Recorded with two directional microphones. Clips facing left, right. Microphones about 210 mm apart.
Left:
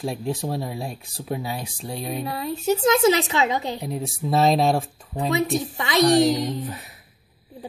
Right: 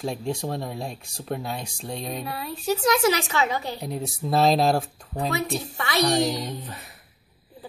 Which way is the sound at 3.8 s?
Centre (ahead or behind).